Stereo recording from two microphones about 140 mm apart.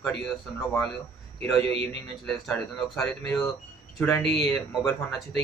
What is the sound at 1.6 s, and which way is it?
Speech, 45° right (ahead or behind).